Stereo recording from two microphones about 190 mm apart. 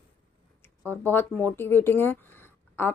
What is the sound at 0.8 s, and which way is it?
A woman's voice, 10° left (ahead or behind).